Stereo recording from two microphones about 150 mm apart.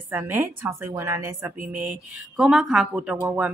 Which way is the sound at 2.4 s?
Centre (ahead or behind).